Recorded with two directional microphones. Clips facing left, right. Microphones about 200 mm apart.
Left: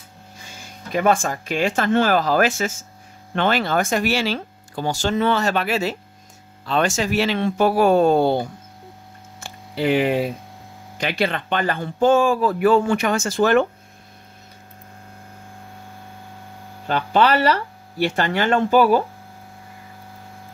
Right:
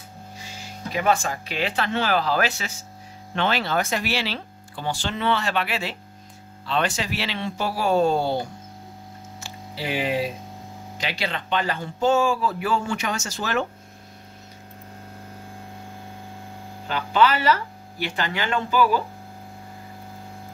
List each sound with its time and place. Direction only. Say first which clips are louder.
0.4 s speech: right 3 dB; 50° left (ahead or behind)
9.4 s a sound: left 10 dB; 55° left (ahead or behind)
11.0 s speech: left 7 dB; 55° left (ahead or behind)
16.8 s speech: left 3 dB; 50° left (ahead or behind)